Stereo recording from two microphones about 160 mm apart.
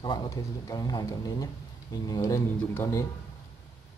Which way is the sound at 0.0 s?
30° left (ahead or behind).